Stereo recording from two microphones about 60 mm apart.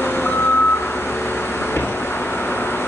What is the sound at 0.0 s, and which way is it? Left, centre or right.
Reversing beeps, left.